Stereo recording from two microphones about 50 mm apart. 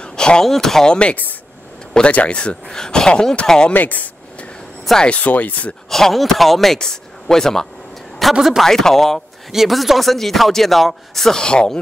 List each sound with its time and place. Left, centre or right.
0.0 s a sound: centre
0.5 s speech: centre
2.0 s speech: left
3.7 s a sound: left
5.0 s speech: left
5.9 s speech: centre
8.2 s a man's voice: centre
8.6 s speech: centre
9.5 s speech: centre